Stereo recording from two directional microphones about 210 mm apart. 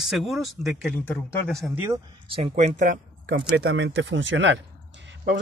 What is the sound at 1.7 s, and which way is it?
Speech, 15° right (ahead or behind).